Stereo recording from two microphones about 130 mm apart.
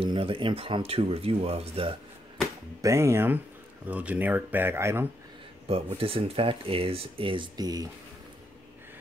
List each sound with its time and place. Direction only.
0.0 s speech: 45° right (ahead or behind)
2.8 s speech: 20° right (ahead or behind)
5.7 s speech: 50° right (ahead or behind); by 7.9 s 30° right (ahead or behind)